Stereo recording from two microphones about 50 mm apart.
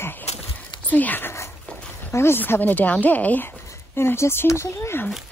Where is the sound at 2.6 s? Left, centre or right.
Left.